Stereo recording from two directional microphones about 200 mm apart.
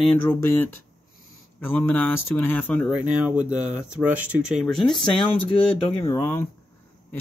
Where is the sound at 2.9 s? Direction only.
5° right (ahead or behind).